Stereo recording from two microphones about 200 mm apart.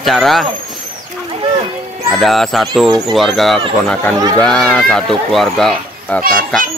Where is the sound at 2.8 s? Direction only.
20° right (ahead or behind).